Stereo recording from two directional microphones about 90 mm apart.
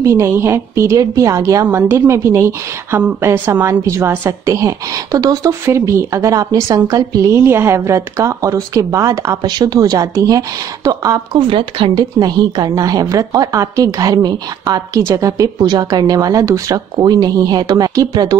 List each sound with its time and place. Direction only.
0.0 s a woman's voice: 30° right (ahead or behind)
11.4 s a woman's voice: 70° right (ahead or behind); by 14.8 s 45° right (ahead or behind)
15.0 s speech: 35° right (ahead or behind)
15.6 s a woman's voice: 50° right (ahead or behind)
16.9 s a woman's voice: 50° right (ahead or behind)